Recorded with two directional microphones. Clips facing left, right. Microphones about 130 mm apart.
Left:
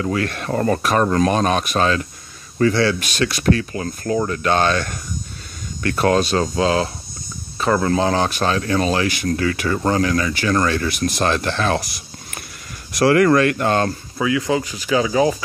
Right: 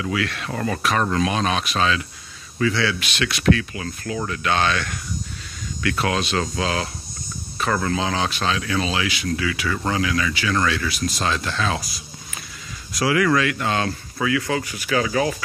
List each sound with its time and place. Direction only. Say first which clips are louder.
0.0 s speech: left 3 dB; 45° left (ahead or behind)
6.5 s a man's voice: left 6 dB; 30° left (ahead or behind)
8.0 s speech: left 5 dB; 45° left (ahead or behind)
12.9 s speech: left 5 dB; 55° left (ahead or behind)
14.1 s speech: left 3 dB; 20° left (ahead or behind)